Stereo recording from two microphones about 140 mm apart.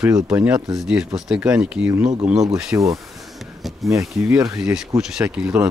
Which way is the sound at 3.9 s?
20° right (ahead or behind).